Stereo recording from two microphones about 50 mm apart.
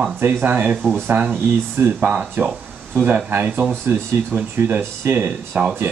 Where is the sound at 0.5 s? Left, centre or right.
Right.